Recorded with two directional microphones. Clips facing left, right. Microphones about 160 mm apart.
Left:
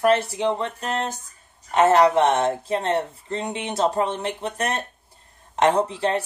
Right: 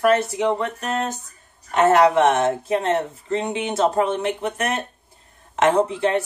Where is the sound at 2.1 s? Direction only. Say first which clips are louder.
Right 2 dB; 30° left (ahead or behind).